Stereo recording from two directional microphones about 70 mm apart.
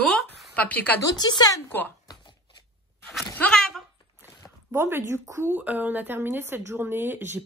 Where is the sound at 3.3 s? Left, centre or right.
Centre.